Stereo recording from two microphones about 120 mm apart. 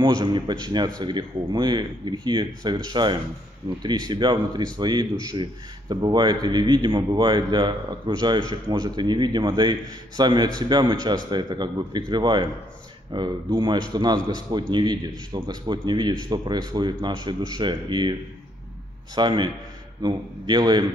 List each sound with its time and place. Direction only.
0.0 s speech: 40° right (ahead or behind)
19.1 s speech: 40° right (ahead or behind)